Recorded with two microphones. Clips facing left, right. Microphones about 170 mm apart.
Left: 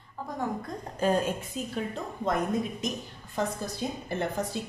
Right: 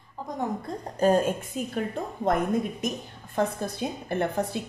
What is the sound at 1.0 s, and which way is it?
Speech, 45° right (ahead or behind).